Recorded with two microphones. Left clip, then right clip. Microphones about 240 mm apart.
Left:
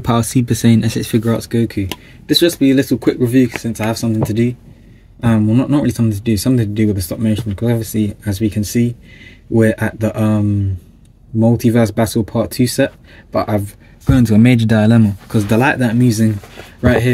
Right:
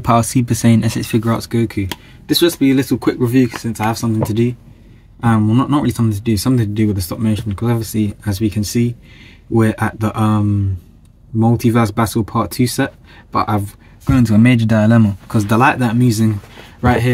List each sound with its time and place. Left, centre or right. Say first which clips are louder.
0.0 s speech: right 2 dB; centre